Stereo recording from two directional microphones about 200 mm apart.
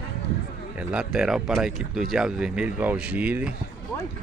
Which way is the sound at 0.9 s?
5° right (ahead or behind).